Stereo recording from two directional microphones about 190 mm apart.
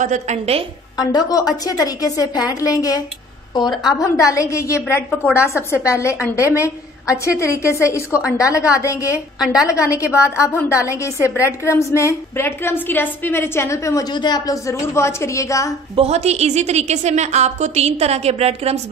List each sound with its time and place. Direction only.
0.0 s a woman's voice: 35° right (ahead or behind)
0.9 s a woman's voice: 20° left (ahead or behind)
16.0 s a woman's voice: 35° right (ahead or behind)